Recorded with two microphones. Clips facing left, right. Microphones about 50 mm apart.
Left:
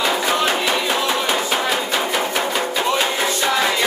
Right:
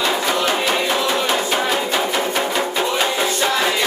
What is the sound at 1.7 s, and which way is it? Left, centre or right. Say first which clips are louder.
Music: right 1 dB; centre.